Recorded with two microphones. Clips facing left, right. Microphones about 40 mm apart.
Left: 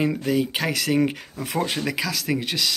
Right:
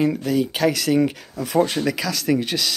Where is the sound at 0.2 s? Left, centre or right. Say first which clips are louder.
Right 3 dB; left.